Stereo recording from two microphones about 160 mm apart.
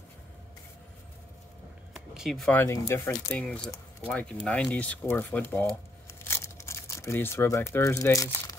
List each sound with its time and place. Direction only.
2.1 s speech: centre (ahead or behind)
2.5 s speech: 15° left (ahead or behind)
3.3 s speech: 5° left (ahead or behind)